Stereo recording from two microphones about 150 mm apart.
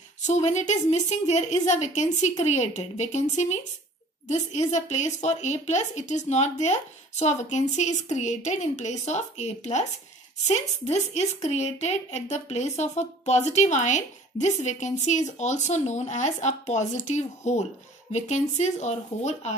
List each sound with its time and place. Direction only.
0.2 s a woman's voice: 50° left (ahead or behind)